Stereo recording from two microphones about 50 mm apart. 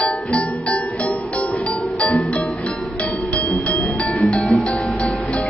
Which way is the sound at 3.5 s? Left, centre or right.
Left.